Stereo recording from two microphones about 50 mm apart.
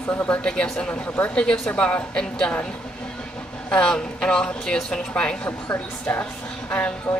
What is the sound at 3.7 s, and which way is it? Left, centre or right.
A woman's voice, centre.